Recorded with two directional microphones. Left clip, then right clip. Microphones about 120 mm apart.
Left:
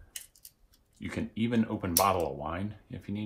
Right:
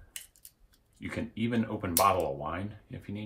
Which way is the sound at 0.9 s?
40° left (ahead or behind).